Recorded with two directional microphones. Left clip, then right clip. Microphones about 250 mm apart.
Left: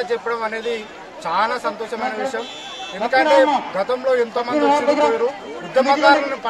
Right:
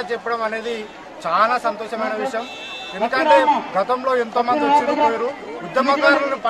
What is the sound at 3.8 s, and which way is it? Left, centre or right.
Speech, centre.